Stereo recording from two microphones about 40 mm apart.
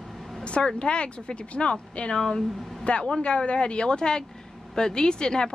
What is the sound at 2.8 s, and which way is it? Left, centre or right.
A woman's voice, left.